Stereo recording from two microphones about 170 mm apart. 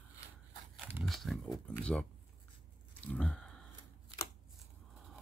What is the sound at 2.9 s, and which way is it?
Grunt, 5° left (ahead or behind).